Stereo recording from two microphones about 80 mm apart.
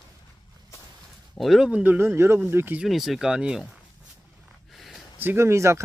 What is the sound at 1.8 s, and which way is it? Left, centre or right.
Speech, right.